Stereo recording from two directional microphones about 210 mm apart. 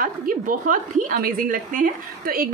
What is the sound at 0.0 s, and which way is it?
A woman's voice, 40° right (ahead or behind).